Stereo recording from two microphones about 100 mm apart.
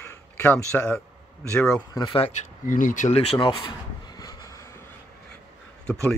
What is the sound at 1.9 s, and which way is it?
Speech, 45° left (ahead or behind).